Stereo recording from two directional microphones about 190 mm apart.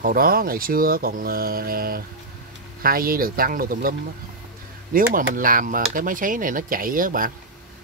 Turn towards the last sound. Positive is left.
turn(degrees=-45)  # may be behind; listen again after turning